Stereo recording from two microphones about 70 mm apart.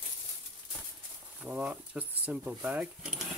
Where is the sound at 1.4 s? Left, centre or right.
Centre.